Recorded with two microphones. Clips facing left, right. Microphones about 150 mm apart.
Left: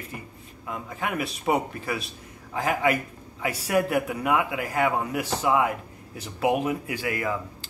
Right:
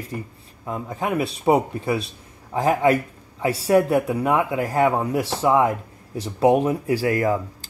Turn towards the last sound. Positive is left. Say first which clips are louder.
# right 8 dB
turn(degrees=-35)  # may be behind; listen again after turning